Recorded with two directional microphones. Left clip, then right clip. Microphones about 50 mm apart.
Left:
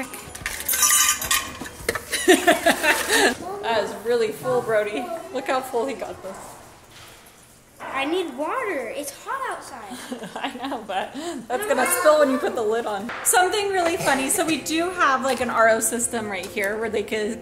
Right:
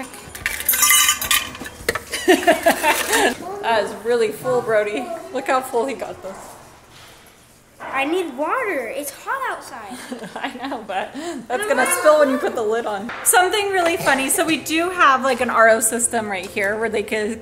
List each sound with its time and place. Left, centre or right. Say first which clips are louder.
0.4 s cutlery: right 3 dB; right
2.1 s speech: right 1 dB; left
3.6 s a woman's voice: right 4 dB; right
7.9 s a woman's voice: right 4 dB; right
8.5 s a woman's voice: right 4 dB; right
9.8 s a woman's voice: right 2 dB; centre
13.2 s a woman's voice: right 3 dB; right